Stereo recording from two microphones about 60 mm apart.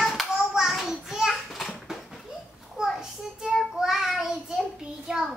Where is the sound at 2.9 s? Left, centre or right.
Centre.